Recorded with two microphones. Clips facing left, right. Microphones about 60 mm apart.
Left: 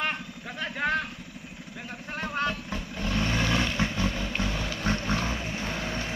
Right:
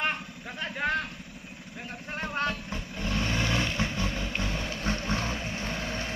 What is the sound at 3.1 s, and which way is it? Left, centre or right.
Vehicle, left.